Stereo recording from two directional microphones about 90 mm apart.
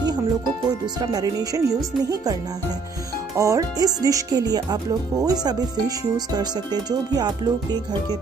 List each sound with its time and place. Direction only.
0.7 s speech: 45° right (ahead or behind)
3.3 s speech: 40° right (ahead or behind)